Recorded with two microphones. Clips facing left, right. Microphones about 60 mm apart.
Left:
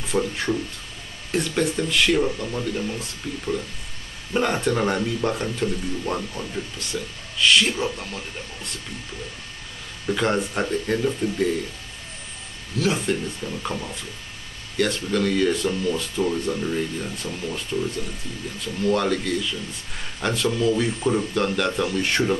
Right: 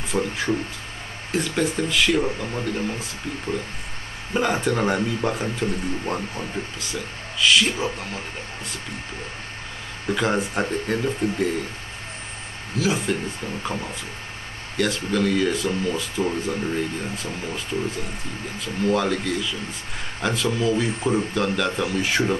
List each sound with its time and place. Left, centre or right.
0.1 s speech: right
1.3 s speech: centre
4.3 s speech: centre
10.0 s speech: centre
12.7 s speech: centre